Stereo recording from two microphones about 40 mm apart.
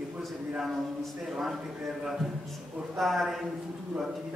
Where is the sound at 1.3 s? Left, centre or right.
Centre.